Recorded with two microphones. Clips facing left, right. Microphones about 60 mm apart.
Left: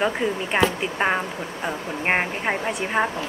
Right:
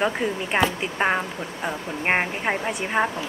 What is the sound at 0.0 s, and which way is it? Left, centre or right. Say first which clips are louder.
Speech: left 1 dB; centre.